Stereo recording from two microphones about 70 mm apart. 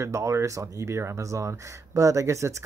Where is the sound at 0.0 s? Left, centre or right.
Right.